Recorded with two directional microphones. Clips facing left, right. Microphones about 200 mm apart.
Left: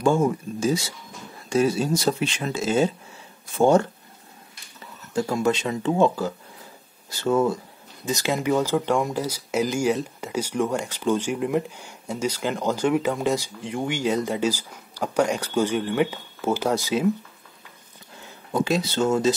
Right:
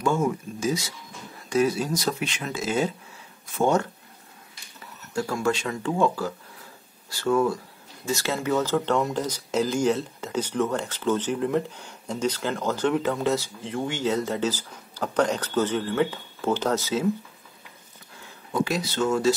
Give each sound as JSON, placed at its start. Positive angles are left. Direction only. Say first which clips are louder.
{"t": 0.0, "sound": "speech", "louder": "left 4 dB", "side_deg": 30}
{"t": 5.1, "sound": "speech", "louder": "left 3 dB", "side_deg": 20}
{"t": 18.5, "sound": "speech", "louder": "left 3 dB", "side_deg": 25}